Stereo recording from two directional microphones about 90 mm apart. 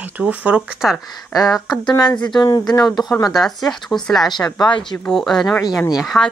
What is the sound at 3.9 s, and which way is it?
Speech, 5° left (ahead or behind).